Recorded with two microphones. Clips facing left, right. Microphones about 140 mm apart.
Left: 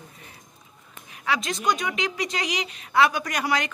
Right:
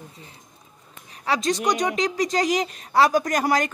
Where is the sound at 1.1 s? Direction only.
35° right (ahead or behind).